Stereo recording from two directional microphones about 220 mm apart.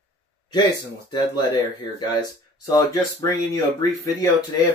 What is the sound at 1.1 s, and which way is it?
Speech, 20° left (ahead or behind).